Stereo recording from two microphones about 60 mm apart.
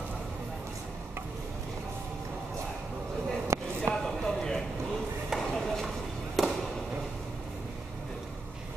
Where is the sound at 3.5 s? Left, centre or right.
Right.